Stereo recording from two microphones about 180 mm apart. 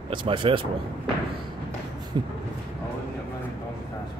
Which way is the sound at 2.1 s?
25° right (ahead or behind).